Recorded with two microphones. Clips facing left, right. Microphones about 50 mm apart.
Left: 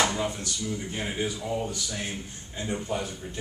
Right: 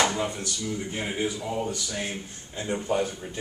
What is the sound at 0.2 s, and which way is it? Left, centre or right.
A man's voice, centre.